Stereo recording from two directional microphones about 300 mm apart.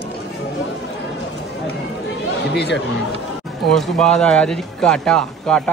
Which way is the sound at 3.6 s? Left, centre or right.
Centre.